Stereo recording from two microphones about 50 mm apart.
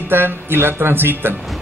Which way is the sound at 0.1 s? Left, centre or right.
Right.